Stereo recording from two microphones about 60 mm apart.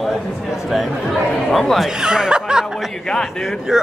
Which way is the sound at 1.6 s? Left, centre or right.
Centre.